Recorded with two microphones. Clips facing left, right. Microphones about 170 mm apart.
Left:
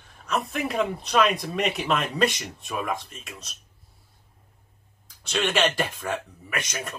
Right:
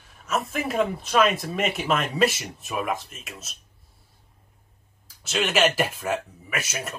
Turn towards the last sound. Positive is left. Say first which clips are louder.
# right 1 dB
turn(degrees=-5)  # may be behind; listen again after turning